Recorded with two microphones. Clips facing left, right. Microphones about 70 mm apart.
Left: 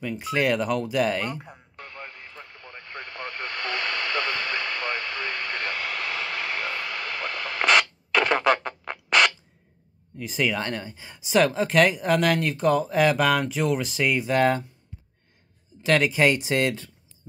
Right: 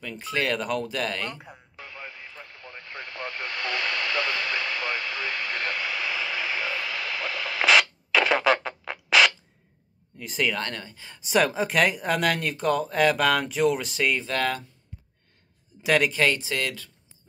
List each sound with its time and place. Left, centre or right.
0.0 s speech: centre
1.4 s radio: centre
10.1 s speech: centre
10.6 s speech: centre
11.1 s speech: centre
14.2 s speech: centre
15.8 s speech: centre
16.1 s speech: centre